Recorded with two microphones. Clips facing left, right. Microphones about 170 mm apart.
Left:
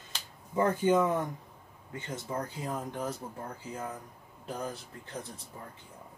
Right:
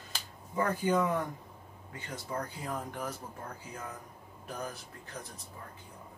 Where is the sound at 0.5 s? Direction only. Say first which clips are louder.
Left 4 dB; 25° left (ahead or behind).